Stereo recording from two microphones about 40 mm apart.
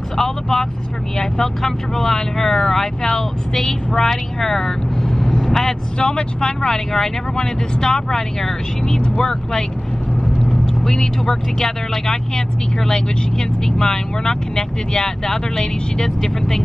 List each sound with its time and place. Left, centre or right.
0.2 s speech: centre